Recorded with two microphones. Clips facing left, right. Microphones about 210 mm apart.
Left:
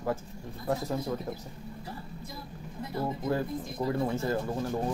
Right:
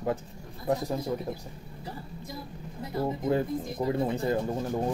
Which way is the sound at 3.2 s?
20° right (ahead or behind).